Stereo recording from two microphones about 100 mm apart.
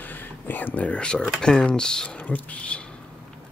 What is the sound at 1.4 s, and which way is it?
Speech, 10° left (ahead or behind).